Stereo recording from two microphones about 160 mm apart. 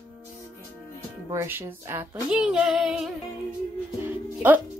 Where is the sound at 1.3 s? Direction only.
15° right (ahead or behind).